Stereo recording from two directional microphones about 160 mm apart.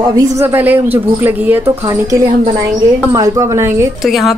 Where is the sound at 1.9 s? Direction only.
20° right (ahead or behind).